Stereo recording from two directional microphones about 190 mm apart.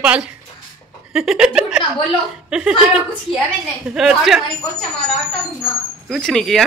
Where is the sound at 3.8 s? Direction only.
5° right (ahead or behind).